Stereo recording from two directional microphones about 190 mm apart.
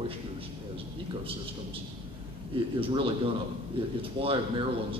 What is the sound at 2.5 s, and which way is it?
Speech, 30° right (ahead or behind).